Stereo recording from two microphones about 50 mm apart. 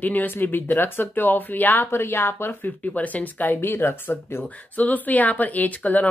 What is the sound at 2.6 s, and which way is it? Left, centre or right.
Speech, left.